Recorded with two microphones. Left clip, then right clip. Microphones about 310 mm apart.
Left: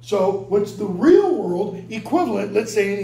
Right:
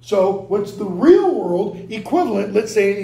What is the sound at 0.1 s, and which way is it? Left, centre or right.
Speech, centre.